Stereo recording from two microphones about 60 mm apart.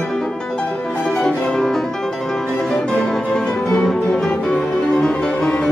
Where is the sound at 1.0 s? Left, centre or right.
Centre.